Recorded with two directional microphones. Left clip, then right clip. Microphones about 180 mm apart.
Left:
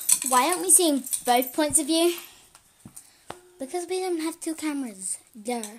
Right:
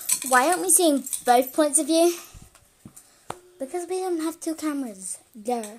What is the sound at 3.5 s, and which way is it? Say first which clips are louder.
Speech: even; 20° left (ahead or behind).